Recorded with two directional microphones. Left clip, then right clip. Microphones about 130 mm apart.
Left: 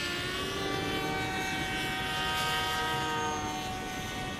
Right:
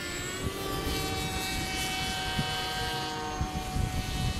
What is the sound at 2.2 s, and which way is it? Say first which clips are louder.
Vehicle: left 2 dB; 15° left (ahead or behind).